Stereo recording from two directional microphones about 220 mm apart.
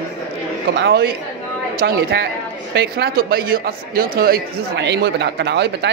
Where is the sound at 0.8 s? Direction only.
45° right (ahead or behind).